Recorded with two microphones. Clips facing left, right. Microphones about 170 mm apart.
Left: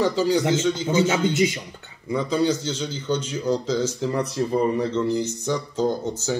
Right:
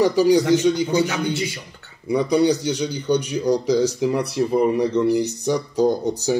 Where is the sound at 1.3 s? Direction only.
20° left (ahead or behind).